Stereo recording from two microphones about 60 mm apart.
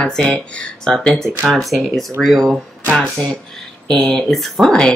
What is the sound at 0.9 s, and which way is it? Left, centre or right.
A woman's voice, centre.